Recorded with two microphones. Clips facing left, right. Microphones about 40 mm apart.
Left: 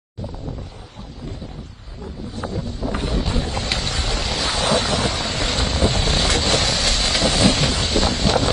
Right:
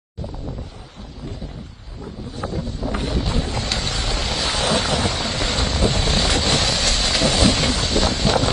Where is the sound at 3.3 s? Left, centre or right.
Left.